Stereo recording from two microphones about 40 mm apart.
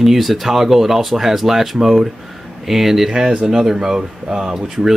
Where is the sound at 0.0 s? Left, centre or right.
Centre.